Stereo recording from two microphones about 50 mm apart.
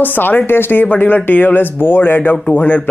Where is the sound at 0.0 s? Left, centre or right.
Left.